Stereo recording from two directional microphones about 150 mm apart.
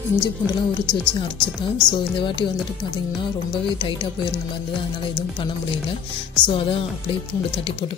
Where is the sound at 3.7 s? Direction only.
35° left (ahead or behind).